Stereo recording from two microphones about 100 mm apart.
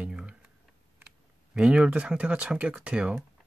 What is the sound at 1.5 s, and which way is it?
Speech, 10° right (ahead or behind).